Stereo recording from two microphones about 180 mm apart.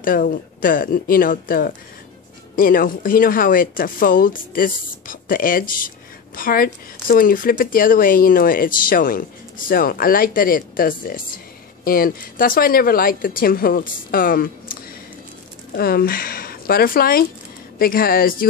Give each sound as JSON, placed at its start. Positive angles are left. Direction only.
{"t": 0.0, "sound": "speech", "side_deg": 50}